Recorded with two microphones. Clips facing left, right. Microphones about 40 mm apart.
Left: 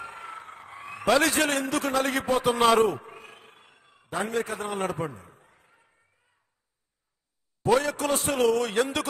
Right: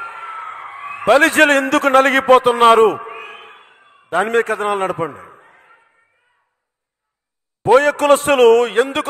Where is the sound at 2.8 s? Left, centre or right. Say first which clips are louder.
Right 12 dB; right.